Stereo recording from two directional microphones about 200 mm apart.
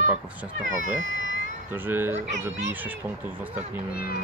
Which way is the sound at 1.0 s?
70° right (ahead or behind).